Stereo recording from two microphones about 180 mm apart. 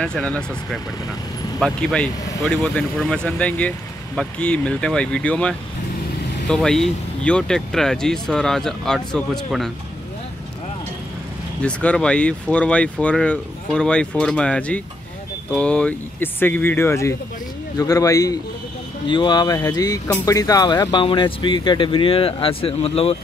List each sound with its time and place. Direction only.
0.0 s speech: 5° left (ahead or behind)
11.6 s speech: 5° left (ahead or behind); by 23.1 s 35° left (ahead or behind)